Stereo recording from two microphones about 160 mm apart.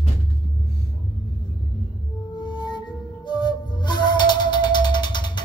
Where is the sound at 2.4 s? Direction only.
30° left (ahead or behind).